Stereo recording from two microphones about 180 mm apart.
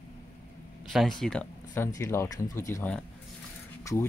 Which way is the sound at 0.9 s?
Centre (ahead or behind).